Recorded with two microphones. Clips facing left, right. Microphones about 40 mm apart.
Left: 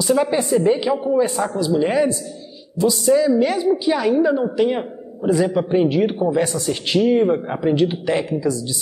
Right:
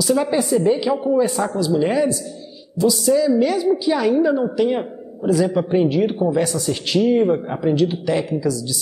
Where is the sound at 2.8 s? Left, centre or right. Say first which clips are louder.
Left 1 dB; left.